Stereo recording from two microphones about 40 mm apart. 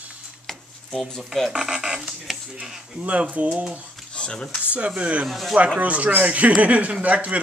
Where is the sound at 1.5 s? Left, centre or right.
Centre.